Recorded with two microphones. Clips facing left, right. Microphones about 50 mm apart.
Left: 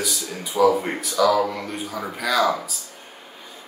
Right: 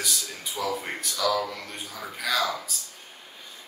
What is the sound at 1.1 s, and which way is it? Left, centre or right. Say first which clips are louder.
Speech: left 8 dB; centre.